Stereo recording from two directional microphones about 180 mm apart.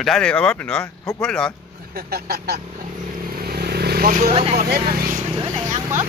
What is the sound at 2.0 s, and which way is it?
Speech, 60° right (ahead or behind).